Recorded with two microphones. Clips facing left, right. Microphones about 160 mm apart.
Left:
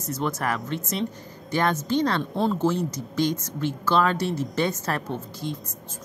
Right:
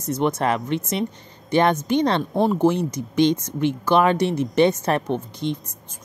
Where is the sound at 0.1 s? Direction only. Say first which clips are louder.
Right 6 dB; 20° right (ahead or behind).